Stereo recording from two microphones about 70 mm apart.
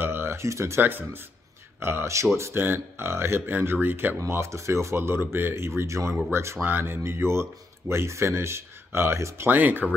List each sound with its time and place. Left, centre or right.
0.0 s a sound: right
0.8 s speech: right
4.3 s speech: right
9.5 s speech: right